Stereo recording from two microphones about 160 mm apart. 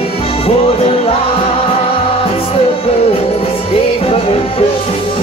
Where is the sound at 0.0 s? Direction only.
35° left (ahead or behind).